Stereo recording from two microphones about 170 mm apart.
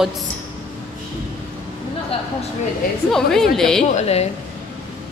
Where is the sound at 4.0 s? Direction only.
40° left (ahead or behind).